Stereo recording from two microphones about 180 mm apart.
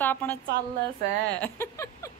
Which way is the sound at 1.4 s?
15° left (ahead or behind).